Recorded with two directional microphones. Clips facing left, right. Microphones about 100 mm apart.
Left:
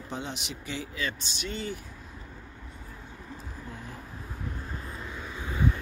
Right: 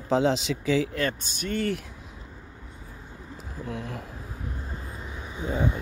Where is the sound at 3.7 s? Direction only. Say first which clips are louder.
Right 10 dB; 70° right (ahead or behind).